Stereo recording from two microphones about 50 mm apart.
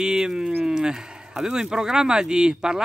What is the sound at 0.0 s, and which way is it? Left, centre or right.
Speech, centre.